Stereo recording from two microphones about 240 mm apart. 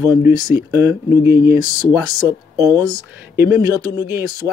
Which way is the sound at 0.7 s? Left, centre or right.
Centre.